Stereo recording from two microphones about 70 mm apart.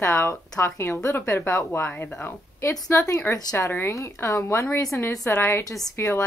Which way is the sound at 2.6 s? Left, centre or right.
Left.